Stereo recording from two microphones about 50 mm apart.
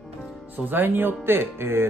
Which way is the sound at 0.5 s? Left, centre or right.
Right.